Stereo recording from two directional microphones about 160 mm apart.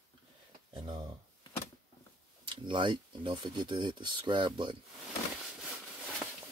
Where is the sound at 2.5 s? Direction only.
30° right (ahead or behind).